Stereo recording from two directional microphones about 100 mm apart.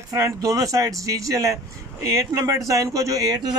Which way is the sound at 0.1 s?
35° right (ahead or behind).